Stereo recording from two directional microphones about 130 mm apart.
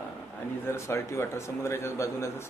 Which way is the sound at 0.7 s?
20° left (ahead or behind).